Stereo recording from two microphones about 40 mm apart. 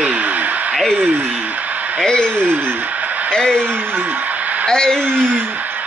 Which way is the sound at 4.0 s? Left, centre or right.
Right.